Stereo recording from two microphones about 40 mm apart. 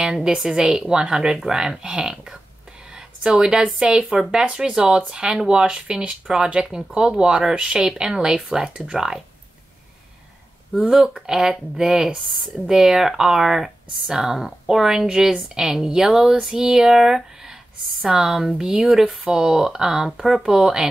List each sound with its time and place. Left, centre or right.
0.0 s a woman's voice: centre
2.9 s a sound: centre
4.1 s speech: centre
10.7 s speech: centre